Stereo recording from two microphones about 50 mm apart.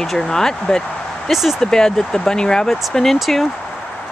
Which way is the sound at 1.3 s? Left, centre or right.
Centre.